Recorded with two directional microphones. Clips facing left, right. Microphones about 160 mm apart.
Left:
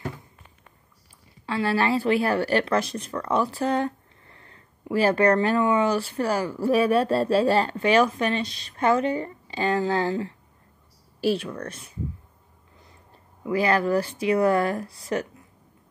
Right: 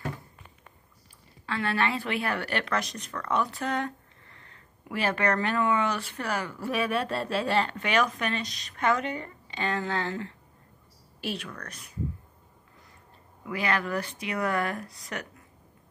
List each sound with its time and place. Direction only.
1.4 s speech: 30° left (ahead or behind)
13.5 s speech: 35° left (ahead or behind)